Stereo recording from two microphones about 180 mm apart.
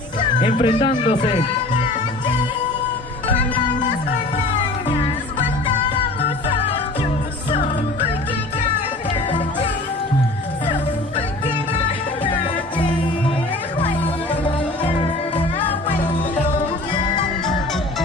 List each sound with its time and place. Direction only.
0.4 s speech: 30° left (ahead or behind)